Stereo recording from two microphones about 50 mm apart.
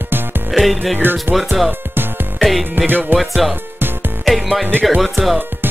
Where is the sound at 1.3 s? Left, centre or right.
Centre.